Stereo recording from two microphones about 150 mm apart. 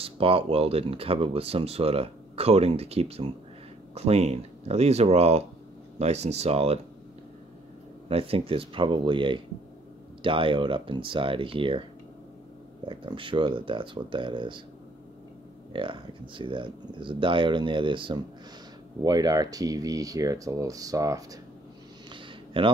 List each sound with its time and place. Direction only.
0.0 s speech: 40° right (ahead or behind)
8.1 s speech: 40° right (ahead or behind)
12.8 s speech: 35° right (ahead or behind)
15.7 s speech: 35° right (ahead or behind)
22.1 s a sound: 35° right (ahead or behind)